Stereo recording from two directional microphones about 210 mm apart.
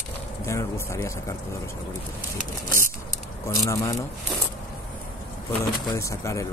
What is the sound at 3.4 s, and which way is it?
Speech, 15° left (ahead or behind).